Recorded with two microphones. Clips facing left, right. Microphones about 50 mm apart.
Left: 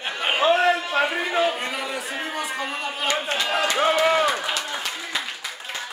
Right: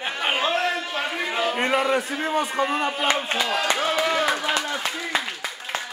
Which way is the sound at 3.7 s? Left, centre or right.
Centre.